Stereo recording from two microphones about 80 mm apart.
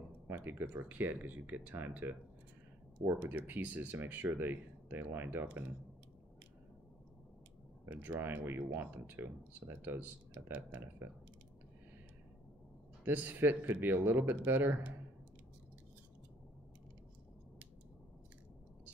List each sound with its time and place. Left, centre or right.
0.3 s speech: right
3.2 s speech: right
7.8 s speech: right
13.0 s speech: right